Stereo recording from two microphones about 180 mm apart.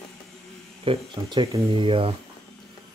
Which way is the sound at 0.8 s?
30° right (ahead or behind).